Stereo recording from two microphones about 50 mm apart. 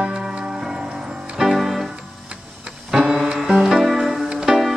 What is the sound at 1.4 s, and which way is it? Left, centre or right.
Music, centre.